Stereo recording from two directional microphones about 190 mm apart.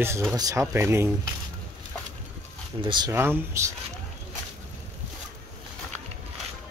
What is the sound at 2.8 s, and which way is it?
Speech, 20° right (ahead or behind).